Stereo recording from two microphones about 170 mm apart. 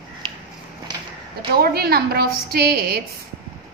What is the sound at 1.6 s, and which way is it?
A woman's voice, 65° right (ahead or behind).